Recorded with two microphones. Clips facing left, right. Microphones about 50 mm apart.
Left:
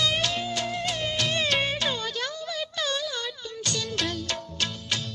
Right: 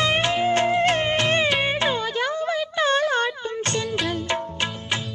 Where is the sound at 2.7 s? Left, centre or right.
Right.